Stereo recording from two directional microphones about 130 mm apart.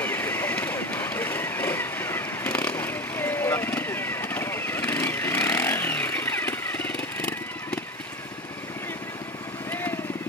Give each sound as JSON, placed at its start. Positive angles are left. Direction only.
{"t": 0.0, "sound": "vehicle", "side_deg": 15}